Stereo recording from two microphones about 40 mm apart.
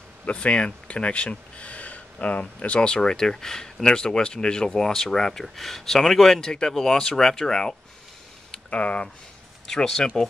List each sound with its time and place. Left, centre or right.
0.3 s speech: left
2.8 s speech: centre
8.6 s speech: left
9.7 s speech: centre